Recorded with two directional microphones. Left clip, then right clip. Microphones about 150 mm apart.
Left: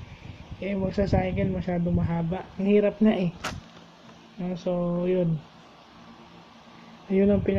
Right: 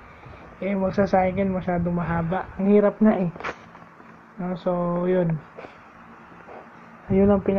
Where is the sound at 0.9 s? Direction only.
Centre (ahead or behind).